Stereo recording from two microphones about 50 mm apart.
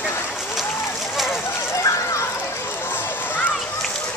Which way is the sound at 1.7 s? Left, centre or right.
Left.